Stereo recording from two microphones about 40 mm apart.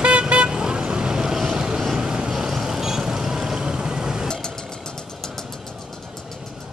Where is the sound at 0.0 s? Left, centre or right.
Right.